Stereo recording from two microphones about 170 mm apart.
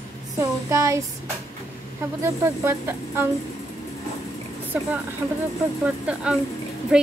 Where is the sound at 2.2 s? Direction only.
15° right (ahead or behind).